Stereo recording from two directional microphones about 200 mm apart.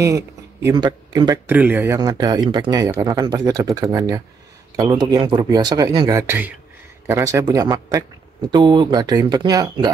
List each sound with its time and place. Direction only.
0.0 s speech: 15° right (ahead or behind)
1.5 s a man's voice: 10° right (ahead or behind)
2.0 s a man's voice: 20° right (ahead or behind)